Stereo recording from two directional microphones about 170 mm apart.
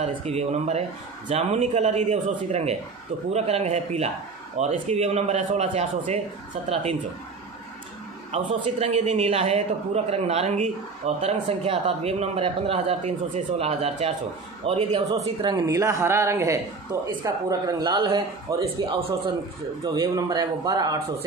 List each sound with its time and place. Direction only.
0.0 s a man's voice: 40° right (ahead or behind)
8.3 s a man's voice: 35° right (ahead or behind)
15.4 s a man's voice: 25° right (ahead or behind)
19.8 s speech: 20° right (ahead or behind)